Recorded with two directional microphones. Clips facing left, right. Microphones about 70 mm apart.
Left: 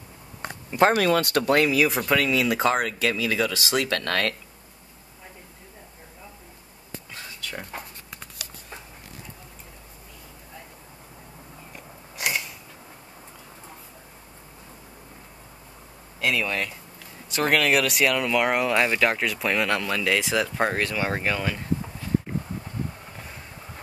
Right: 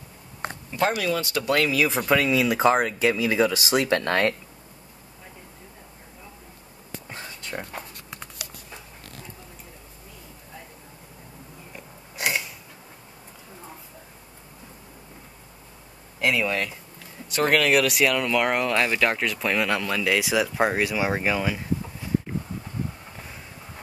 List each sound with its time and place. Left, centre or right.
0.7 s speech: left
0.9 s speech: left
1.7 s speech: centre
2.1 s speech: centre
7.1 s a sound: right
12.2 s scissors: centre
16.2 s speech: centre